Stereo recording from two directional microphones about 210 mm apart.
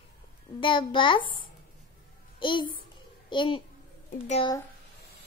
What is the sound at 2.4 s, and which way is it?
Speech, 20° left (ahead or behind).